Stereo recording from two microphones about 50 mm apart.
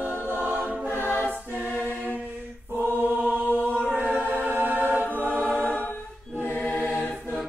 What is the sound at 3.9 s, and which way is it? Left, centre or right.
A capella, right.